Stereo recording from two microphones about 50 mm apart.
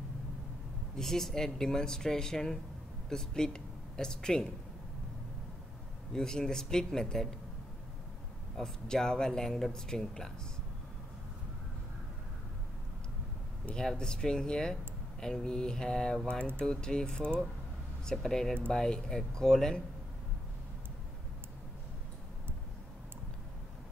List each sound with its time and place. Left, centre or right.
0.9 s speech: centre
6.1 s speech: centre
8.5 s speech: centre
13.7 s speech: centre